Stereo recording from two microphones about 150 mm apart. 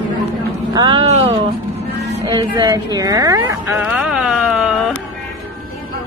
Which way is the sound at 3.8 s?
5° right (ahead or behind).